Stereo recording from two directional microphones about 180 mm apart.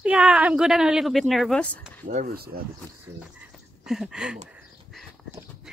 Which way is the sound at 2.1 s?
50° right (ahead or behind).